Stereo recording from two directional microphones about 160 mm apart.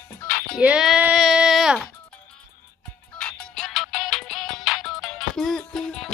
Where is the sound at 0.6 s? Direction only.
5° right (ahead or behind).